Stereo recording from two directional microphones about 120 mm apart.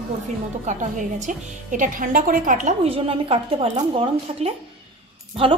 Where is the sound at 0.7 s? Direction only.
90° right.